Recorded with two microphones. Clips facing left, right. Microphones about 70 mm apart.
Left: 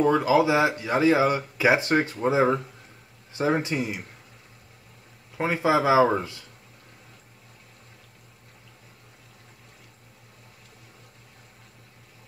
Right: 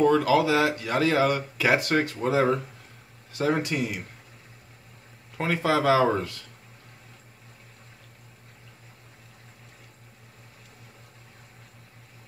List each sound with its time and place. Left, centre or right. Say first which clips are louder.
0.0 s speech: even; centre
5.4 s speech: left 2 dB; centre